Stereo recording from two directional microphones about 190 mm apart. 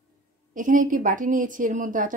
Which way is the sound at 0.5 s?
45° right (ahead or behind).